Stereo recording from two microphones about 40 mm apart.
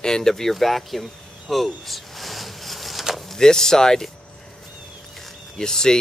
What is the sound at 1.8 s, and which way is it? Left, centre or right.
Vehicle, centre.